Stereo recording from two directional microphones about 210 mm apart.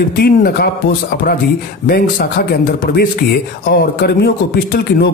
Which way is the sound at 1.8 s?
45° left (ahead or behind).